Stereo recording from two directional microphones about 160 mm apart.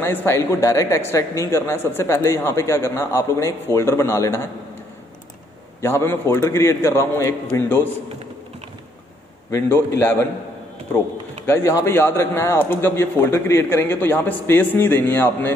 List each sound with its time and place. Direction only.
0.0 s speech: 15° left (ahead or behind)
5.8 s speech: 15° left (ahead or behind)
9.5 s speech: 15° left (ahead or behind)
11.4 s speech: 15° left (ahead or behind)